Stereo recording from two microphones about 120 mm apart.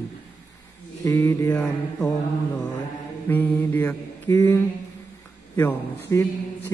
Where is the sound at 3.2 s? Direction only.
15° left (ahead or behind).